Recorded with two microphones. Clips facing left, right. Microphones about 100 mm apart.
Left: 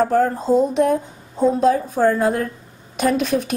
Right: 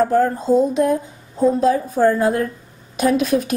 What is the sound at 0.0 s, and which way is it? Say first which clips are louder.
Speech: right 1 dB; 30° left (ahead or behind).